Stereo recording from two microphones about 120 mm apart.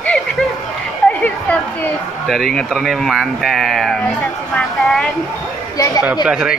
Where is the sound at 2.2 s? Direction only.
Centre (ahead or behind).